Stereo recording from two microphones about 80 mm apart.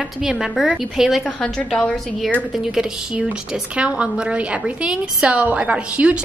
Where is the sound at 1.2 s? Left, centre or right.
Centre.